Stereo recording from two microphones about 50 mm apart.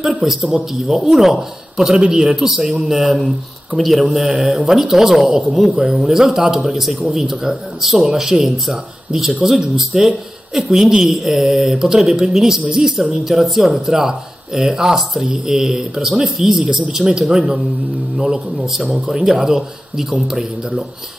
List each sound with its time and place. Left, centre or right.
0.0 s a woman's voice: centre
2.0 s a man's voice: right
2.3 s a woman's voice: centre